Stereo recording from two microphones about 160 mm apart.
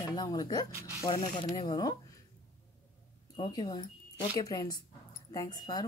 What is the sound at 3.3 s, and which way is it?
Speech, 30° left (ahead or behind).